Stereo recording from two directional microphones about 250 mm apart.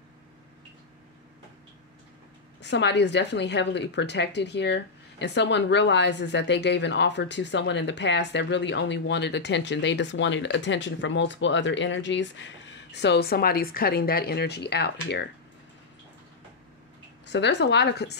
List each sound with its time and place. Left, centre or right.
2.6 s a woman's voice: left
17.3 s a woman's voice: left